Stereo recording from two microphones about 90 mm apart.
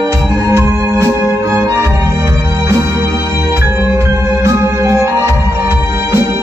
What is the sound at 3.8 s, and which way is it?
Organ, 35° right (ahead or behind).